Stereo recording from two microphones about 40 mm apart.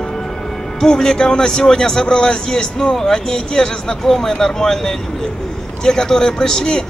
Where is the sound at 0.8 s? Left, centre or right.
Centre.